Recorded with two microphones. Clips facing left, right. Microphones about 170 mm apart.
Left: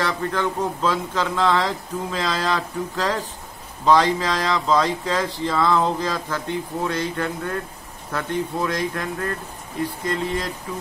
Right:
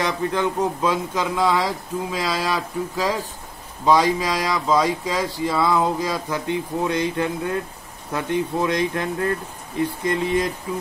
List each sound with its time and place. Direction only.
0.0 s speech: 15° right (ahead or behind)